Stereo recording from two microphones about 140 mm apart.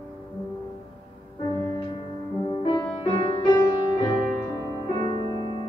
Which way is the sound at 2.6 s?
35° left (ahead or behind).